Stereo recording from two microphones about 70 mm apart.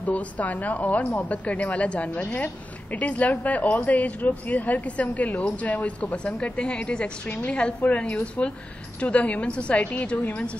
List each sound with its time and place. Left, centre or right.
0.0 s a woman's voice: left